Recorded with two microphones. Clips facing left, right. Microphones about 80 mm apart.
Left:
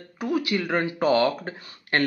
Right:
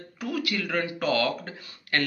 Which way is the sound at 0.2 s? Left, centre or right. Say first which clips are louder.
Left 5 dB; left.